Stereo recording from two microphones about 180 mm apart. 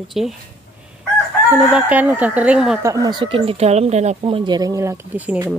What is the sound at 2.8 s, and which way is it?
Speech, 20° right (ahead or behind).